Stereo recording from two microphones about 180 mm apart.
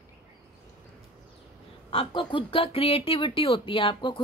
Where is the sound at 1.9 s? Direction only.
30° left (ahead or behind).